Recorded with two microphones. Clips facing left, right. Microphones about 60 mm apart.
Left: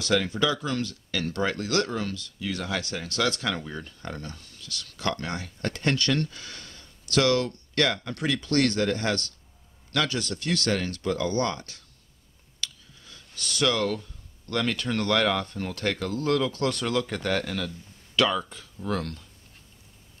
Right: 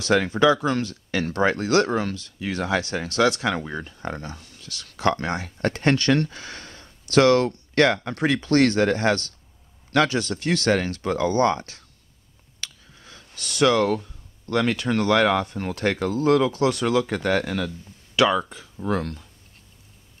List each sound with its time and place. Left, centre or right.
0.0 s speech: right
12.5 s a sound: right
14.5 s speech: centre